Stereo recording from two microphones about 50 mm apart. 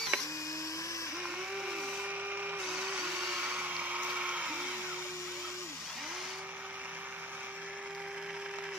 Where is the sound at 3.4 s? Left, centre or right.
Right.